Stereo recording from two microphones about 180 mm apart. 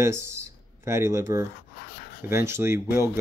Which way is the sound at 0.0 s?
15° right (ahead or behind).